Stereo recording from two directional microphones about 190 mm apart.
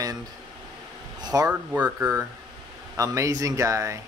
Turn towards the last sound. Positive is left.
turn(degrees=-15)  # may be behind; listen again after turning